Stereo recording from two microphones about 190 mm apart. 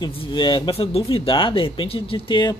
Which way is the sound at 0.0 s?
25° left (ahead or behind).